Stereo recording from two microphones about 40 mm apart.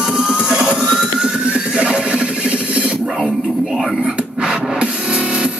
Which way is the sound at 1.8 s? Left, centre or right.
Right.